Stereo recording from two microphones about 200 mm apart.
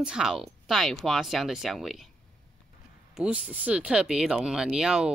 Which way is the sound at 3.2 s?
5° right (ahead or behind).